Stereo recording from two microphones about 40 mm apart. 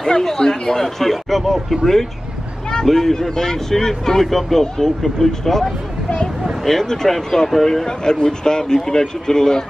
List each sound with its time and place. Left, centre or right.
0.0 s speech: centre
7.8 s speech: centre